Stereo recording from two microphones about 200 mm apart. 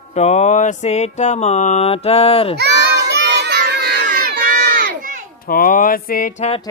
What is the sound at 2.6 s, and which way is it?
Child singing, 55° right (ahead or behind).